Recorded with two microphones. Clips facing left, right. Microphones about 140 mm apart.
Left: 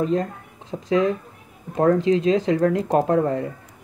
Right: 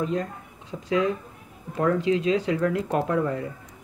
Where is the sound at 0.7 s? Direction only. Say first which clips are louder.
Left 4 dB; 30° left (ahead or behind).